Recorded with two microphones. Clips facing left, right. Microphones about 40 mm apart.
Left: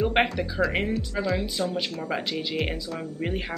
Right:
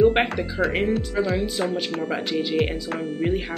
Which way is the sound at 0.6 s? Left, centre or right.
Centre.